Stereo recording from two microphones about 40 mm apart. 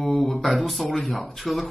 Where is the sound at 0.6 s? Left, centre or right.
Centre.